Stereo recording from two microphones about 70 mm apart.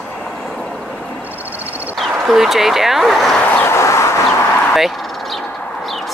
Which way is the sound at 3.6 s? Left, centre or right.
Left.